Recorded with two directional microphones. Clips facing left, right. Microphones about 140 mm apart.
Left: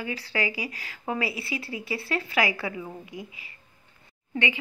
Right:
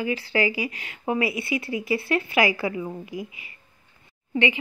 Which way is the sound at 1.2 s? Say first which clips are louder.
Right 5 dB; 30° left (ahead or behind).